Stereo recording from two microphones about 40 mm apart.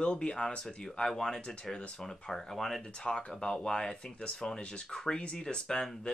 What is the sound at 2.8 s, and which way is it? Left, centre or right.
Speech, left.